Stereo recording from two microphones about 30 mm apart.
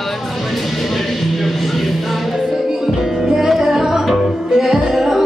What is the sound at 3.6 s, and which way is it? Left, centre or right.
Music, centre.